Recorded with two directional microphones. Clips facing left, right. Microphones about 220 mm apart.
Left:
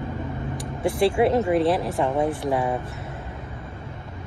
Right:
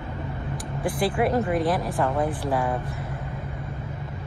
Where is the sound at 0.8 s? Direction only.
25° left (ahead or behind).